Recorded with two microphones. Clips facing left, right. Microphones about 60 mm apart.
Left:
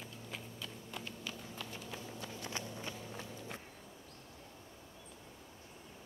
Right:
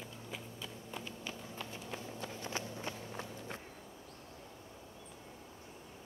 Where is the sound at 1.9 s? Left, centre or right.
Right.